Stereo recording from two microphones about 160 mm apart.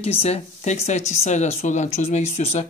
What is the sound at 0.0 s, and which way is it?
Speech, 40° left (ahead or behind).